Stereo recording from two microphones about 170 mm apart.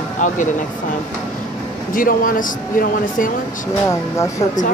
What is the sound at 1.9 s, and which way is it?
Speech, 55° left (ahead or behind).